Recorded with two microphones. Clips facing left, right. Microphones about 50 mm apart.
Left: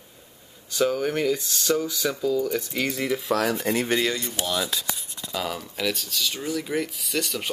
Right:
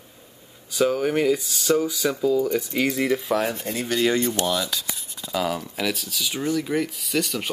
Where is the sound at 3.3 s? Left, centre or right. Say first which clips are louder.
Left 2 dB; left.